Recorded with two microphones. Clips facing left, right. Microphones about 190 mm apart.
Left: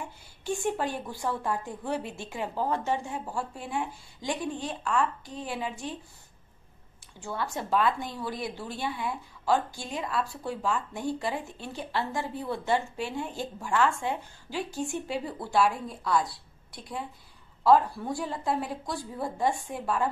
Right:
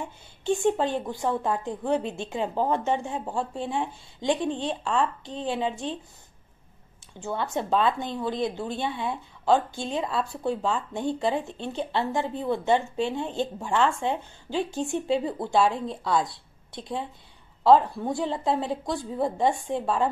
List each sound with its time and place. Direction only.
0.4 s speech: 25° right (ahead or behind)
7.2 s speech: 20° right (ahead or behind)